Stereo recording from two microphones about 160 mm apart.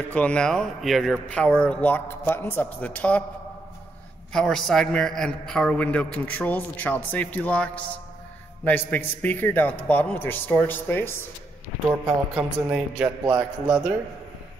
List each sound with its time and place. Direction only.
0.1 s a man's voice: 5° left (ahead or behind)
4.3 s a man's voice: 5° left (ahead or behind)
12.4 s a man's voice: 5° right (ahead or behind)